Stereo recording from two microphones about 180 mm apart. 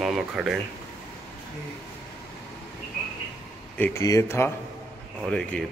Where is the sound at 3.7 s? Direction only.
10° left (ahead or behind).